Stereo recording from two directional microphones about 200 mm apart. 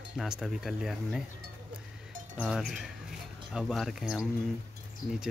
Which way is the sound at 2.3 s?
Centre (ahead or behind).